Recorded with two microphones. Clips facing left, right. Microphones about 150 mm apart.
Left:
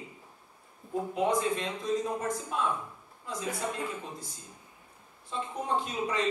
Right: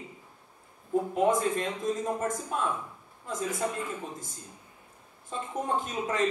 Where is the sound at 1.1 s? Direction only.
45° right (ahead or behind).